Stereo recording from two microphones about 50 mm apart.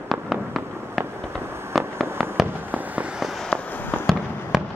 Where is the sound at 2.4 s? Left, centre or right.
Right.